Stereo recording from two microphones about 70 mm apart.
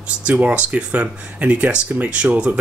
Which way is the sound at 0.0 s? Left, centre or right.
Centre.